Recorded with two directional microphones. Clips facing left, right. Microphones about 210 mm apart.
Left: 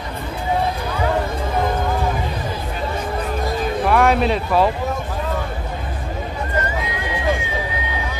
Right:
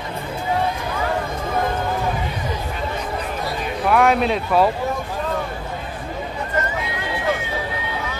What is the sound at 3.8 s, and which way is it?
Speech, centre (ahead or behind).